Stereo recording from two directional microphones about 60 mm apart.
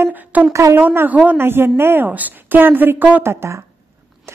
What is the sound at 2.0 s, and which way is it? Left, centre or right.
A woman's voice, right.